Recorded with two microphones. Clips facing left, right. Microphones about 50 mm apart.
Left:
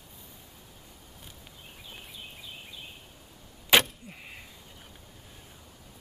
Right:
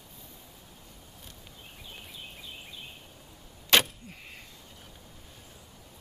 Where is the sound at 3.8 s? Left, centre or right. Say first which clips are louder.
Left 1 dB; centre.